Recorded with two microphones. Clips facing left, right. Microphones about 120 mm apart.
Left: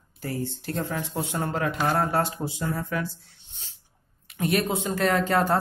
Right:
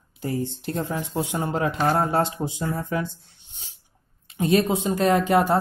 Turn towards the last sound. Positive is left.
turn(degrees=-15)  # may be behind; listen again after turning